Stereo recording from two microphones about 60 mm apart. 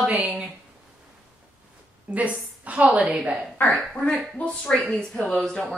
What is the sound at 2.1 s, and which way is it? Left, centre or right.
A woman's voice, centre.